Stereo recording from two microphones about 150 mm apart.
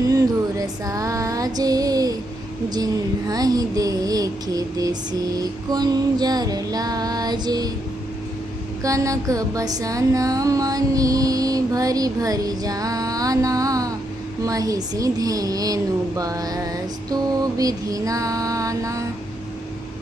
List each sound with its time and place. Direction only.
0.1 s music: 25° right (ahead or behind)
8.8 s music: 20° right (ahead or behind)